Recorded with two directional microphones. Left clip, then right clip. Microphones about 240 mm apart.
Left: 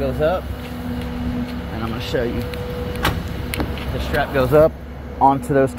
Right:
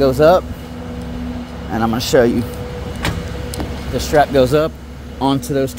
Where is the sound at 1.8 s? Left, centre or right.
Right.